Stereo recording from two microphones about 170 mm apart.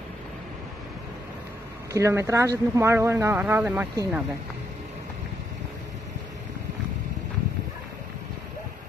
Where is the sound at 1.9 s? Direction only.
15° right (ahead or behind).